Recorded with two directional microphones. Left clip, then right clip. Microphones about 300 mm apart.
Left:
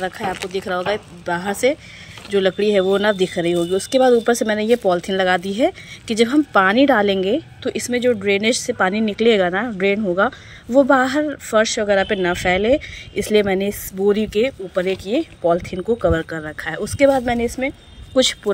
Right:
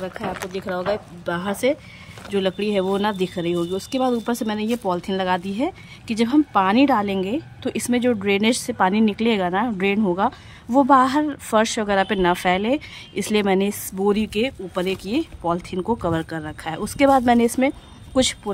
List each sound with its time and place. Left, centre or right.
0.7 s speech: centre
1.2 s speech: centre